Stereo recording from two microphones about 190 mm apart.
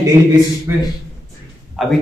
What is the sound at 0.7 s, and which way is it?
Speech, 15° right (ahead or behind).